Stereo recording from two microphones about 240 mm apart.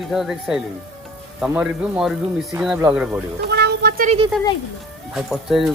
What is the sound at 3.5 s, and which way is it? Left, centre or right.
Child singing, right.